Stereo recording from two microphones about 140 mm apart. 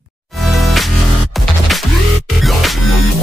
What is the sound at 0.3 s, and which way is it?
Music, centre (ahead or behind).